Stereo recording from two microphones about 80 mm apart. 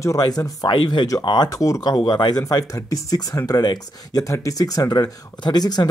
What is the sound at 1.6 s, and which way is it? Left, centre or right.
Speech, left.